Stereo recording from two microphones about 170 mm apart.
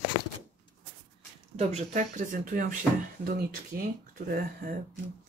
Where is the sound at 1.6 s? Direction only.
40° right (ahead or behind); by 4.7 s 60° right (ahead or behind).